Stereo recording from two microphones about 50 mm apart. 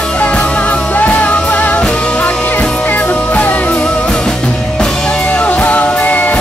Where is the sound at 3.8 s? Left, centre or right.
Centre.